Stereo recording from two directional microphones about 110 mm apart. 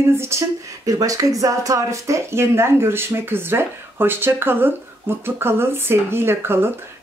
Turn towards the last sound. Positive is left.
turn(degrees=-20)  # may be behind; listen again after turning